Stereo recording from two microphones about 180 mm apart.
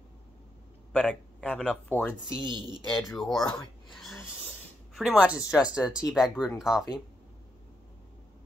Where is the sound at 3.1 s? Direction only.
Centre (ahead or behind).